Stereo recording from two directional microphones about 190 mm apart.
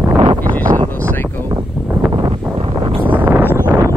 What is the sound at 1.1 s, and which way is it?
Speech, 10° left (ahead or behind).